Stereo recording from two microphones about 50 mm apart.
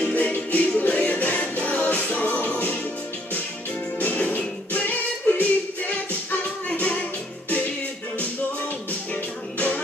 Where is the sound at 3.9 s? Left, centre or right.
Left.